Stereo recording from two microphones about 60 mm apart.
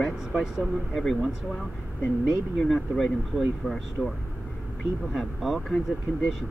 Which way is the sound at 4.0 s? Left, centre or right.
Centre.